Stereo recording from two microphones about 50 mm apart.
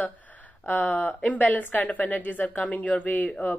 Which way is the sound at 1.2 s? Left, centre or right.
Left.